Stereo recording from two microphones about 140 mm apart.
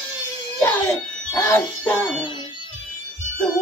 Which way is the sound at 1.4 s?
15° left (ahead or behind).